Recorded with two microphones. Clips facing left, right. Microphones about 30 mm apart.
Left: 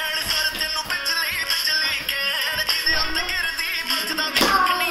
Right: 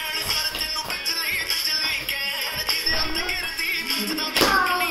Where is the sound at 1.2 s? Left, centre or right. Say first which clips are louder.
Left 2 dB; left.